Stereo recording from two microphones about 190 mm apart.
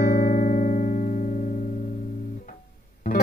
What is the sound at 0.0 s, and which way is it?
Music, 45° left (ahead or behind).